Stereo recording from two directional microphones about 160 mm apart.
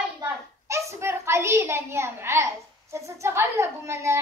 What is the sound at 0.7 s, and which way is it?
A child's voice, 15° right (ahead or behind).